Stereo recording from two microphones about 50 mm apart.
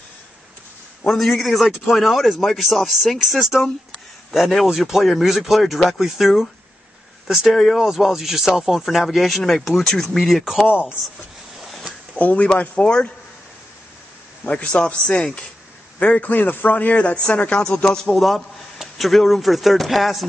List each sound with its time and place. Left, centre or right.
1.0 s speech: centre
11.5 s a sound: centre
12.2 s speech: left
12.4 s a man's voice: left
14.4 s a man's voice: left
16.0 s a man's voice: left
18.1 s speech: centre